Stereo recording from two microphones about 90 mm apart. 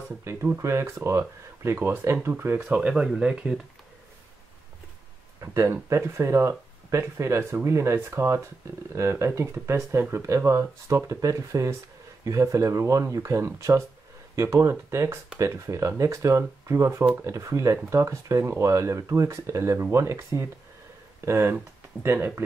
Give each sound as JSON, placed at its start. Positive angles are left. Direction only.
{"t": 0.2, "sound": "speech", "side_deg": -25}
{"t": 5.4, "sound": "speech", "side_deg": -30}